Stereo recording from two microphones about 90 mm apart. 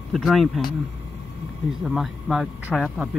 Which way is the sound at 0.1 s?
Centre (ahead or behind).